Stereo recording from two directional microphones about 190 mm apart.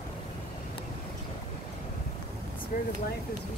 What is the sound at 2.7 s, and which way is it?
Speech, 45° left (ahead or behind).